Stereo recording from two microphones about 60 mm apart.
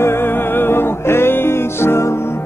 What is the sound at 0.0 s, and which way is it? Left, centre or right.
Music, left.